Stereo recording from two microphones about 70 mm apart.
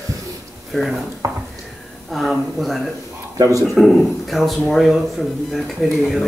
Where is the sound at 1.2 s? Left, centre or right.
Right.